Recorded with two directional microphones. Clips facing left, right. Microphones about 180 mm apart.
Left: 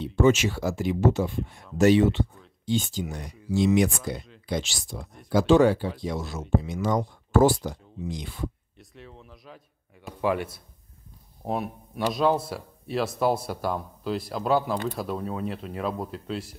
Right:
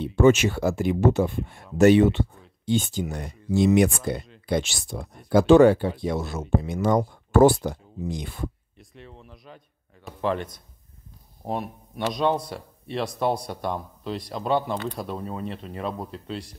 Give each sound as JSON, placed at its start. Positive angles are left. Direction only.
{"t": 0.0, "sound": "speech", "side_deg": -60}
{"t": 8.7, "sound": "a man's voice", "side_deg": 0}